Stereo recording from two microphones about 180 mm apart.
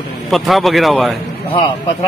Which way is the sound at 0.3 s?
Centre (ahead or behind).